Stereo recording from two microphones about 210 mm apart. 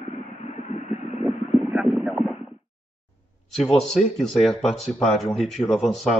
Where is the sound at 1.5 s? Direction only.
Centre (ahead or behind).